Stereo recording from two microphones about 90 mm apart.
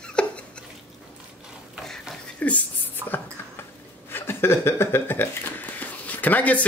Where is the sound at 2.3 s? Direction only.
15° left (ahead or behind).